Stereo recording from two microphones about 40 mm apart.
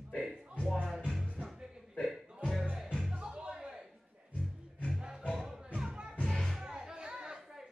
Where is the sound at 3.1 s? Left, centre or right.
Centre.